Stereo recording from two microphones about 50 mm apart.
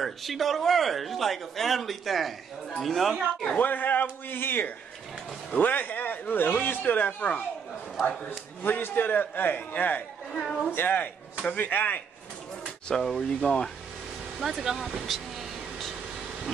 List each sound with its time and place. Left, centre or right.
0.0 s speech: centre
3.5 s speech: left
10.3 s speech: centre
10.7 s a man's voice: left
12.9 s speech: centre
14.4 s speech: centre